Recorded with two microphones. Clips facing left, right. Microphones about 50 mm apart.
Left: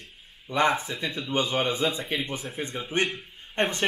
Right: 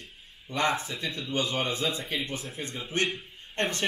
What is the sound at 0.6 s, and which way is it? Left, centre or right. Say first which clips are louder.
Speech: left 4 dB; centre.